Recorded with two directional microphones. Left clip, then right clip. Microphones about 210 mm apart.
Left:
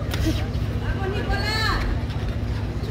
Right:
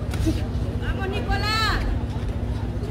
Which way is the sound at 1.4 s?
45° right (ahead or behind).